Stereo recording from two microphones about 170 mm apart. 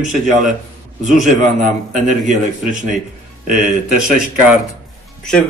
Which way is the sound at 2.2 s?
50° right (ahead or behind).